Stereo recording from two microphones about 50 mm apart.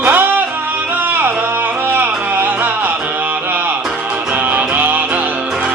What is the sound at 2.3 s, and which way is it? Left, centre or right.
Music, right.